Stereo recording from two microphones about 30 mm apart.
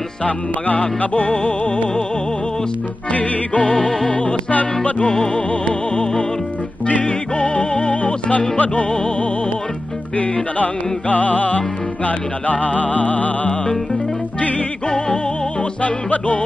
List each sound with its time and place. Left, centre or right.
0.7 s music: left
3.1 s music: left
4.1 s music: left
6.9 s music: left
10.6 s music: left
15.8 s music: left